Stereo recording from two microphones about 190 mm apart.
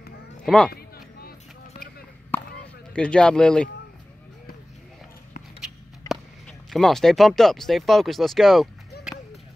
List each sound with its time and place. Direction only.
0.7 s a sound: 55° left (ahead or behind)
1.7 s chop: 50° left (ahead or behind)
2.3 s chop: 10° left (ahead or behind)
2.9 s speech: 5° left (ahead or behind)
5.6 s speech: centre (ahead or behind)